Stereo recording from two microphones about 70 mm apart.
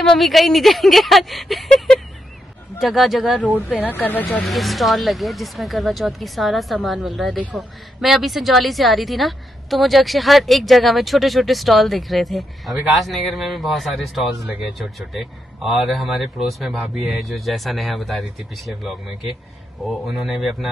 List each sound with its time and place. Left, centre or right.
0.0 s speech: centre
3.9 s speech: left
4.5 s speech: centre